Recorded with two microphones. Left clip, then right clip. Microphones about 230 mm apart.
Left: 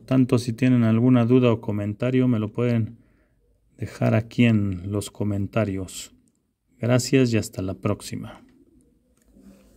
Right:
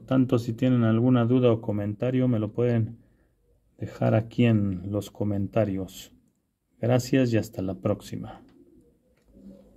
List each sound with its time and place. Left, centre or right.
0.0 s speech: left